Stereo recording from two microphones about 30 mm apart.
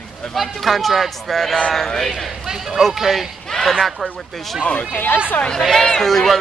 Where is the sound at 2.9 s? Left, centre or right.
Centre.